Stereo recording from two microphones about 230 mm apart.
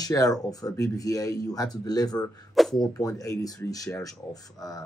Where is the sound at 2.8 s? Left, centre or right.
Centre.